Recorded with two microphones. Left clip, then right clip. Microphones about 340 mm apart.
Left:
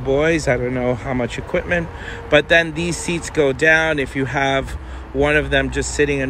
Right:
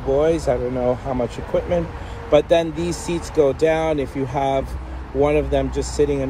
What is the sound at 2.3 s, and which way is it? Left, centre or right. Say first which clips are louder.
Speech: left 2 dB; left.